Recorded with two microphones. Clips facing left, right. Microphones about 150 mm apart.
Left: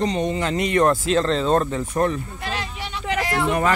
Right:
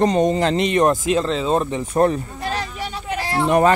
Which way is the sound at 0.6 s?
20° right (ahead or behind).